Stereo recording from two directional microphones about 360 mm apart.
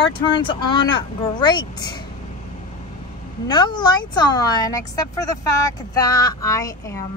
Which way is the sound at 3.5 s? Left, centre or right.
Centre.